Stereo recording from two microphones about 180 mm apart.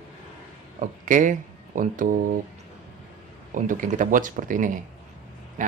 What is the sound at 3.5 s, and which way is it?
Speech, 45° right (ahead or behind).